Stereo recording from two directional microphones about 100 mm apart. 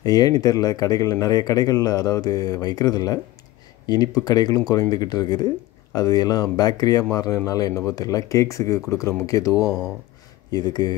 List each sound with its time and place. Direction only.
0.0 s speech: 40° left (ahead or behind)
10.5 s speech: 45° left (ahead or behind)